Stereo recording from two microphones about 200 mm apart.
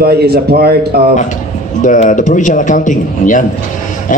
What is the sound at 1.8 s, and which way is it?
A man's voice, 40° left (ahead or behind).